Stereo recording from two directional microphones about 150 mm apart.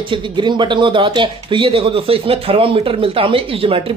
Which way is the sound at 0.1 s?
30° right (ahead or behind).